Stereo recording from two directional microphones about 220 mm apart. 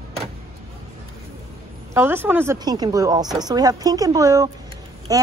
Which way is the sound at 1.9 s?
10° right (ahead or behind).